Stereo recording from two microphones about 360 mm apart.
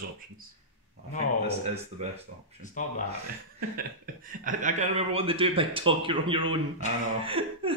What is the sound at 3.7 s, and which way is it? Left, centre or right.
Speech, right.